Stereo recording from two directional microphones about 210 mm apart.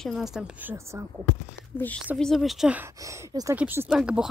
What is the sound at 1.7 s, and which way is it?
A woman's voice, 10° left (ahead or behind).